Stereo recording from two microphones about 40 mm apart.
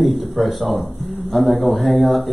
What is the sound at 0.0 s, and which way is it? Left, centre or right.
Speech, centre.